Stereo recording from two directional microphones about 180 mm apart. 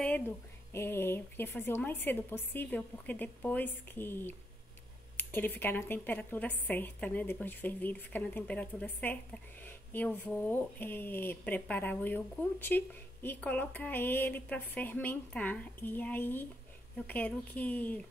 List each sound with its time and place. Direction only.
0.7 s a woman's voice: 15° left (ahead or behind)